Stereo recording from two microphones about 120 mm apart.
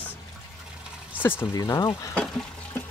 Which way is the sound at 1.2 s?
20° left (ahead or behind).